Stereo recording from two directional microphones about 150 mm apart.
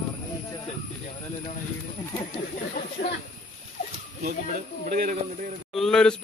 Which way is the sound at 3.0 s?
90° left.